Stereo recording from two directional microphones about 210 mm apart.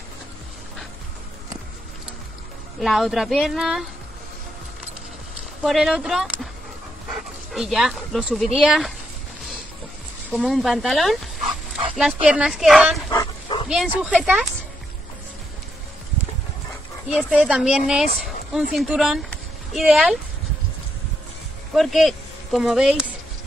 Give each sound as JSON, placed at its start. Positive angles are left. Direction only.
{"t": 2.8, "sound": "speech", "side_deg": 0}
{"t": 5.6, "sound": "speech", "side_deg": 0}
{"t": 7.5, "sound": "speech", "side_deg": 0}
{"t": 10.3, "sound": "speech", "side_deg": 0}
{"t": 13.1, "sound": "dog", "side_deg": 20}
{"t": 13.7, "sound": "speech", "side_deg": -5}
{"t": 17.1, "sound": "speech", "side_deg": -5}
{"t": 21.7, "sound": "speech", "side_deg": 0}